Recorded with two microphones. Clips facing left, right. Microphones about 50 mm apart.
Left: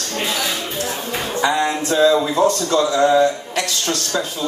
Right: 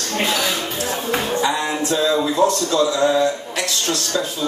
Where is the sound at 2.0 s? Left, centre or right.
Centre.